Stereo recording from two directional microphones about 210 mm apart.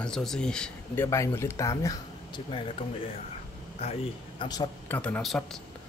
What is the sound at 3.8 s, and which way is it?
A man's voice, 25° left (ahead or behind).